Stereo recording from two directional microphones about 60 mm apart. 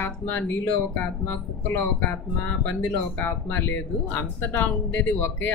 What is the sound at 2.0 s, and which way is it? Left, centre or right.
Speech, left.